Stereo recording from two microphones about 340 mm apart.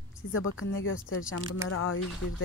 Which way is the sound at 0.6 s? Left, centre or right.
Left.